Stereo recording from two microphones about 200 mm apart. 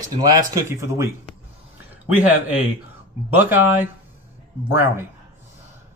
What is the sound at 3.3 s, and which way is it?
Speech, 10° right (ahead or behind).